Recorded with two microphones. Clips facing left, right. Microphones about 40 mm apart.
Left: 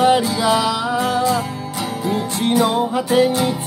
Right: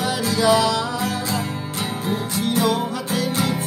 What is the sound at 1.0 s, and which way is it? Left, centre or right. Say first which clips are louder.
Music: left 7 dB; left.